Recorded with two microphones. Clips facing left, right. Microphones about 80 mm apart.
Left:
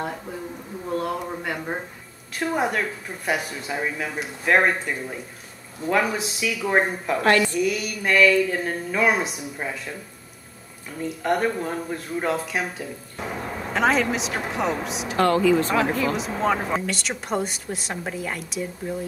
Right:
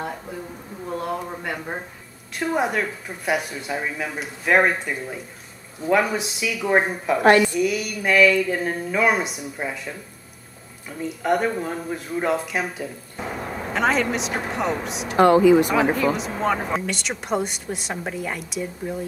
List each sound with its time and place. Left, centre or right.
0.8 s a sound: centre
2.3 s speech: centre
11.0 s speech: centre
15.1 s speech: centre
15.7 s speech: centre